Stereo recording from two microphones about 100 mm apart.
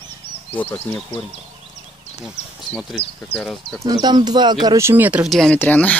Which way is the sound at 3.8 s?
45° right (ahead or behind).